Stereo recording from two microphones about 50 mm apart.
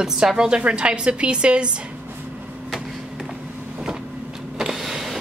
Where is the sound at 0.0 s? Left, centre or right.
Centre.